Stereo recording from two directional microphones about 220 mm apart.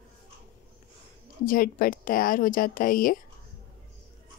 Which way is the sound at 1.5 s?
40° left (ahead or behind).